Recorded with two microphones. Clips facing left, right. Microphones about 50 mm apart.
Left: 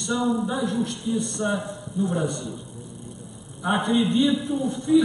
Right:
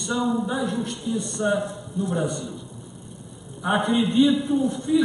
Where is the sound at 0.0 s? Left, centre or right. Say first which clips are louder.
Even; centre.